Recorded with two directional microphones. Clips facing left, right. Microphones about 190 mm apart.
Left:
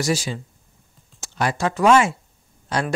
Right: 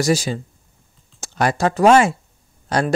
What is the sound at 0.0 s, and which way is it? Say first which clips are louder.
Speech: right 4 dB; 40° right (ahead or behind).